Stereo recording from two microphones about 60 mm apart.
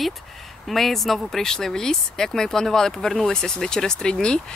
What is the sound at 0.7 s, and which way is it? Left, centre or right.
Speech, centre.